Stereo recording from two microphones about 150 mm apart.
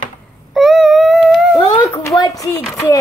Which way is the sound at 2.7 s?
20° left (ahead or behind).